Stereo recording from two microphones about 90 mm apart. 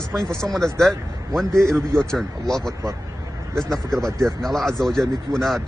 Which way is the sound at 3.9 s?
5° left (ahead or behind).